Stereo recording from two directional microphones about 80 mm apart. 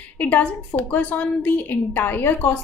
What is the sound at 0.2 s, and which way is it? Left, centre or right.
A woman's voice, left.